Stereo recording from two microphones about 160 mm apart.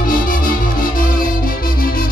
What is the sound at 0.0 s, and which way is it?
Music, 60° left (ahead or behind).